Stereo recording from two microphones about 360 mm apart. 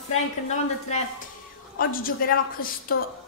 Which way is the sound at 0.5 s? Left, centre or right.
Centre.